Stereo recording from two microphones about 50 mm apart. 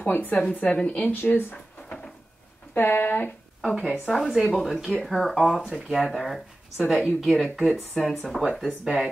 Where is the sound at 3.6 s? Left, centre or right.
Centre.